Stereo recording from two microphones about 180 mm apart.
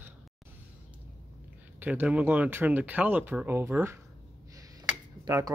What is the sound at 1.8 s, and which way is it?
Speech, 10° right (ahead or behind).